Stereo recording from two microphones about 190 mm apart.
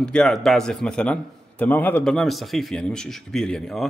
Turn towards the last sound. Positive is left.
turn(degrees=0)  # may be behind; listen again after turning